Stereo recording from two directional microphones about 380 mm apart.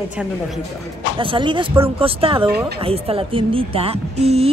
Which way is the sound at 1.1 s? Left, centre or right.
Centre.